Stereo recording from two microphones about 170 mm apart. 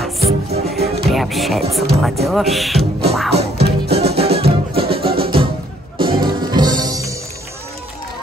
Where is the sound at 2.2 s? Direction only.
Centre (ahead or behind).